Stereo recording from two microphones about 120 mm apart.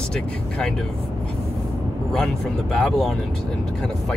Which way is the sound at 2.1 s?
5° left (ahead or behind).